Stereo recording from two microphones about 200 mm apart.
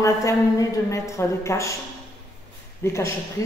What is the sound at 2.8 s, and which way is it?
Speech, 15° left (ahead or behind).